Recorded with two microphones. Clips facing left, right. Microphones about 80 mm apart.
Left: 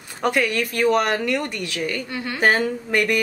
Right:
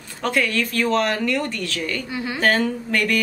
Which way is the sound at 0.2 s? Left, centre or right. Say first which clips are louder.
Left 1 dB; centre.